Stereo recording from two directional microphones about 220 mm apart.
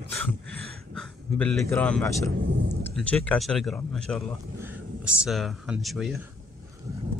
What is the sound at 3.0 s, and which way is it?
Speech, 5° left (ahead or behind).